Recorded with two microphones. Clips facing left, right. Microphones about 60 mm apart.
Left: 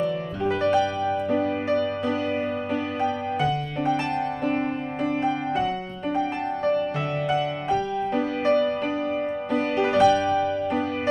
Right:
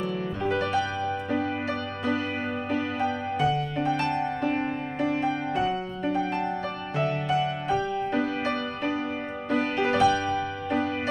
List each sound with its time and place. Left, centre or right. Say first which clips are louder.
0.5 s music: left 5 dB; centre
4.5 s music: left 2 dB; centre
8.2 s music: left 6 dB; centre
10.0 s music: left 6 dB; centre